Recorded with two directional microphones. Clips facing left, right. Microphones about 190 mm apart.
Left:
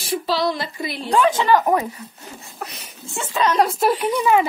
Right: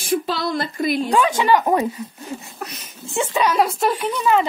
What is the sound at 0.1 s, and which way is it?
Speech, 50° right (ahead or behind).